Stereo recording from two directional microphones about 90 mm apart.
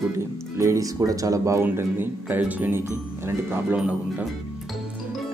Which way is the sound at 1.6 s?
20° right (ahead or behind).